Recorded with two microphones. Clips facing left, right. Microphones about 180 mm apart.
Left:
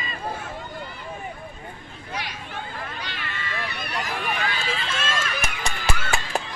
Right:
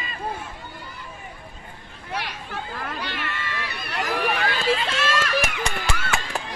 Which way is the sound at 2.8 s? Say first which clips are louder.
Right 4 dB; 65° right (ahead or behind).